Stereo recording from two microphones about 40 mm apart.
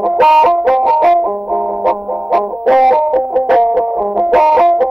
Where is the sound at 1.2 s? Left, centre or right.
Right.